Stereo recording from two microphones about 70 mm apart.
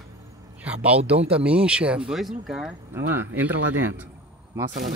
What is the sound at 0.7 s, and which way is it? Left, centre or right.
Speech, centre.